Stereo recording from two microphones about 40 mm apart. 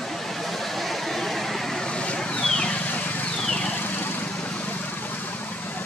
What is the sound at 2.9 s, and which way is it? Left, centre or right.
Vehicle, left.